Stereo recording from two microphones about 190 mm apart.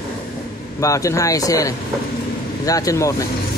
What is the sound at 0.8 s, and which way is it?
Speech, 15° left (ahead or behind).